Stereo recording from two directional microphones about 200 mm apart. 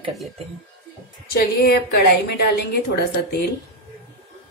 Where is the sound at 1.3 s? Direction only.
55° left (ahead or behind).